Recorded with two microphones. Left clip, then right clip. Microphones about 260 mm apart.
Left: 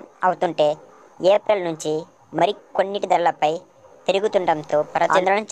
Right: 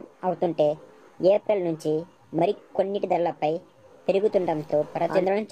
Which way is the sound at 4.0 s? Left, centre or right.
Left.